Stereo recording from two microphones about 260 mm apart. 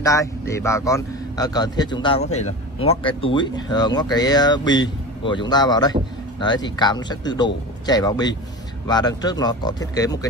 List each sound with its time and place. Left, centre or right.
0.0 s a man's voice: centre